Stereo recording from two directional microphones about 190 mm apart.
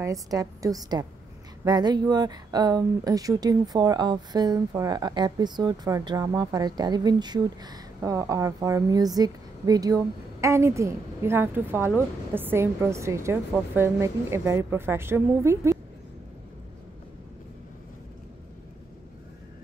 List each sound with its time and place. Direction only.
0.0 s a woman's voice: 15° right (ahead or behind)